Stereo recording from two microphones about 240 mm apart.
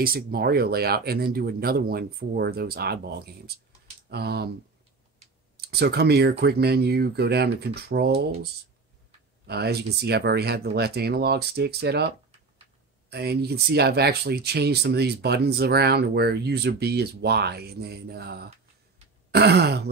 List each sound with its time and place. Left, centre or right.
0.0 s speech: right
5.6 s speech: right
9.5 s speech: right
13.1 s speech: right